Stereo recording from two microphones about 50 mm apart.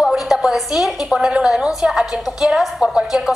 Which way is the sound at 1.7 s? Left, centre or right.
Centre.